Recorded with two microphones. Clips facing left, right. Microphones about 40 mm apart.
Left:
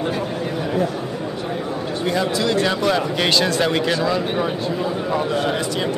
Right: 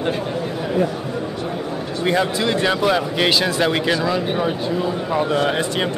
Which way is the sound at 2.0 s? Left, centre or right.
Right.